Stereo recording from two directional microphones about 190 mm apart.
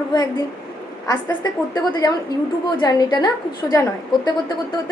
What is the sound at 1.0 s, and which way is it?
A woman's voice, 20° left (ahead or behind).